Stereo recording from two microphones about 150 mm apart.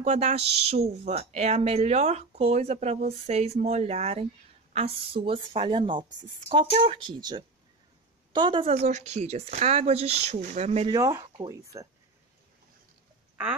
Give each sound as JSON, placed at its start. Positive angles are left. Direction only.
{"t": 0.0, "sound": "a woman's voice", "side_deg": -50}
{"t": 10.9, "sound": "speech", "side_deg": -25}